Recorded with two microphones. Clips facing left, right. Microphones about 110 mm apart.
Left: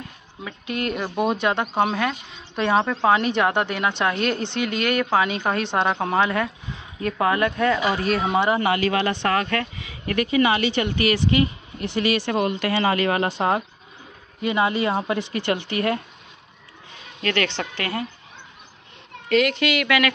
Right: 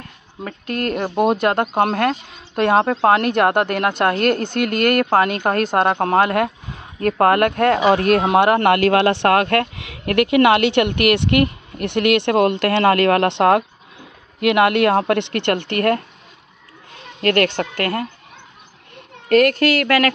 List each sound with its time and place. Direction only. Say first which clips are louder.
0.4 s a woman's voice: right 4 dB; 50° right (ahead or behind)
17.2 s speech: right 7 dB; 50° right (ahead or behind)
19.2 s speech: right 6 dB; 50° right (ahead or behind)